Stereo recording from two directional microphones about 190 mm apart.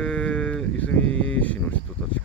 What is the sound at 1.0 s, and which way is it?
Speech, 90° left.